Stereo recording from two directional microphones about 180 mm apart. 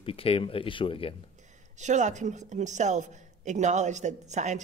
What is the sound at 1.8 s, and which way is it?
A woman's voice, 40° right (ahead or behind).